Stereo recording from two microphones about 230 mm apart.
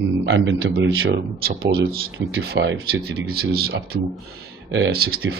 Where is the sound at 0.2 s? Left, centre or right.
Right.